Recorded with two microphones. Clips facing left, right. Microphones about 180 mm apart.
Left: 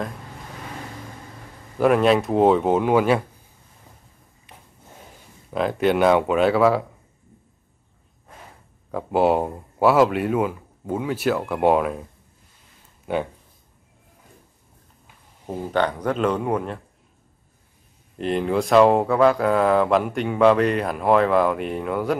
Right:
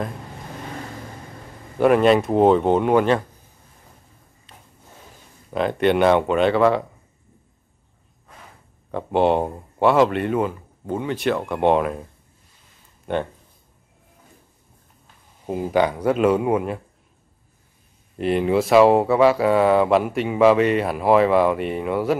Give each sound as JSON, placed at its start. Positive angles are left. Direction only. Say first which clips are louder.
{"t": 1.8, "sound": "speech", "louder": "right 2 dB", "side_deg": 0}
{"t": 4.5, "sound": "wood", "louder": "left 1 dB", "side_deg": 15}
{"t": 5.5, "sound": "speech", "louder": "right 1 dB", "side_deg": 0}
{"t": 8.9, "sound": "speech", "louder": "right 1 dB", "side_deg": 5}
{"t": 13.0, "sound": "speech", "louder": "even", "side_deg": 5}
{"t": 15.4, "sound": "speech", "louder": "right 3 dB", "side_deg": -10}
{"t": 18.1, "sound": "speech", "louder": "right 3 dB", "side_deg": -5}